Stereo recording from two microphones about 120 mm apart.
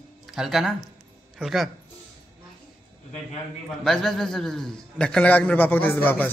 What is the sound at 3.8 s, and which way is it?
A man's voice, 5° left (ahead or behind).